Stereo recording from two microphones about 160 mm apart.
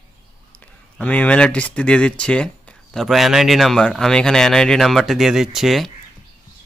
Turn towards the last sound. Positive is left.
turn(degrees=0)  # may be behind; listen again after turning